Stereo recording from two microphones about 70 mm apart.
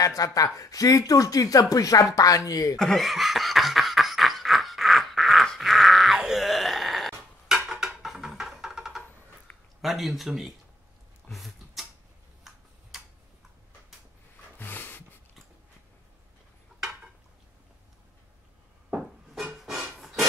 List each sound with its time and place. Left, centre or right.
0.0 s speech: left
2.8 s snicker: centre
9.8 s speech: centre
11.2 s a sound: centre
14.6 s dog: left
18.9 s a sound: centre